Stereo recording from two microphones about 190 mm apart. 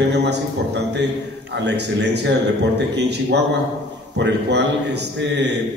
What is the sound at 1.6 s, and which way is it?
A man's voice, 65° right (ahead or behind).